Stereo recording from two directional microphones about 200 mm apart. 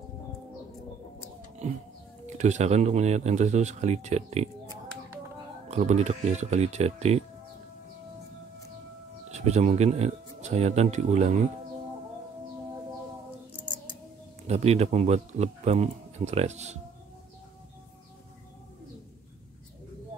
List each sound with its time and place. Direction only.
2.2 s speech: 35° right (ahead or behind)
5.7 s speech: 35° right (ahead or behind)
9.3 s speech: 35° right (ahead or behind)
14.5 s speech: 30° right (ahead or behind)